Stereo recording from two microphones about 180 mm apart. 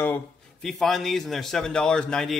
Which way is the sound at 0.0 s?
5° left (ahead or behind).